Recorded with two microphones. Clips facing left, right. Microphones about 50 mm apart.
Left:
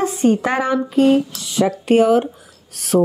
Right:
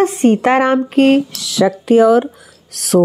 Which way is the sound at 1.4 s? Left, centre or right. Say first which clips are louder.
Right 4 dB; right.